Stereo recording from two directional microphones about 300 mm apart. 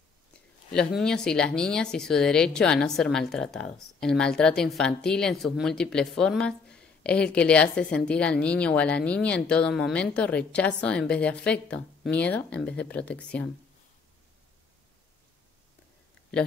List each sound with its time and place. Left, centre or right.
0.3 s speech: centre